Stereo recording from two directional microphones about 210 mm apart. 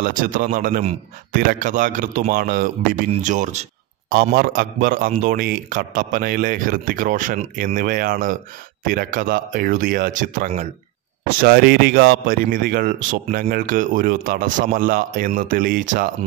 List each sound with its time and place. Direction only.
0.0 s a man's voice: 40° right (ahead or behind)
4.1 s a man's voice: 45° right (ahead or behind)
11.3 s speech: 45° right (ahead or behind)